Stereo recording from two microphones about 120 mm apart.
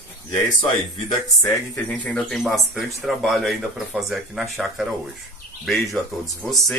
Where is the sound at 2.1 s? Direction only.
Centre (ahead or behind).